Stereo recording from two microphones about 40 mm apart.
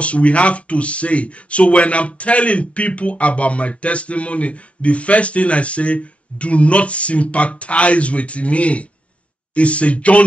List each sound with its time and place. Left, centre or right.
0.0 s speech: left